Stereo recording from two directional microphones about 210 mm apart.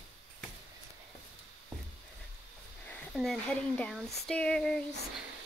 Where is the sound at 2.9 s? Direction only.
Centre (ahead or behind).